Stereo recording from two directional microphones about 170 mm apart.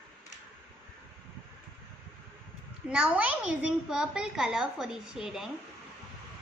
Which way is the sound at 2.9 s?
5° right (ahead or behind).